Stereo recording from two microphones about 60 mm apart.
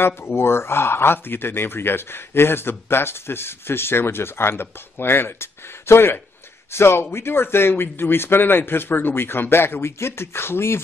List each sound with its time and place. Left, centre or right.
0.0 s speech: left